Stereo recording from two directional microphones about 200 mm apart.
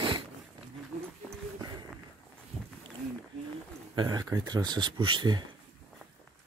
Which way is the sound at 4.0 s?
20° right (ahead or behind).